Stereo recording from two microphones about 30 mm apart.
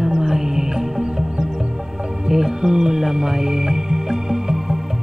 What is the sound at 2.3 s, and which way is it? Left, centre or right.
Music, centre.